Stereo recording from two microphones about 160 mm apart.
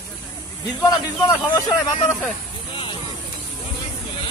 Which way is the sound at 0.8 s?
25° left (ahead or behind).